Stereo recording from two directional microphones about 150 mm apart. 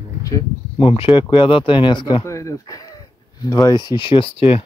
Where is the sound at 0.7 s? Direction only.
35° left (ahead or behind).